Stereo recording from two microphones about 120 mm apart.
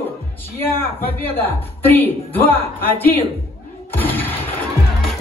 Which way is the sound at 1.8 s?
15° left (ahead or behind).